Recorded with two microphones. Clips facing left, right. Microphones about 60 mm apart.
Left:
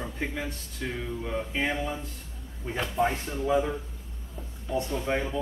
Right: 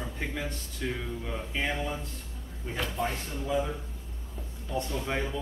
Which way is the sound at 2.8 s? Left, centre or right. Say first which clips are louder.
Left 5 dB; left.